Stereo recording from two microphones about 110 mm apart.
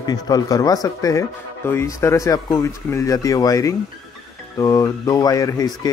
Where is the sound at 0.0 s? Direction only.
35° left (ahead or behind).